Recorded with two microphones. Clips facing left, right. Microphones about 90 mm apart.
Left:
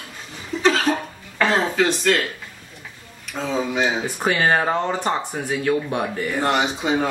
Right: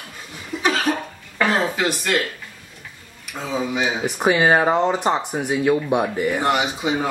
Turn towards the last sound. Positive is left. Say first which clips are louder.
# left 1 dB
turn(degrees=-5)  # may be behind; listen again after turning